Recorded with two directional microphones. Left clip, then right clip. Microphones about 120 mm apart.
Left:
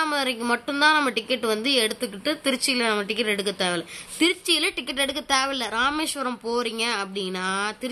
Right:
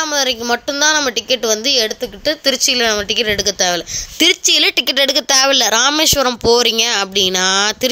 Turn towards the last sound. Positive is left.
turn(degrees=-90)